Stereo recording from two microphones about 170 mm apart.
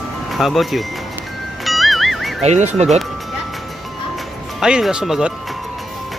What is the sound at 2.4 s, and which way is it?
Speech, 40° right (ahead or behind).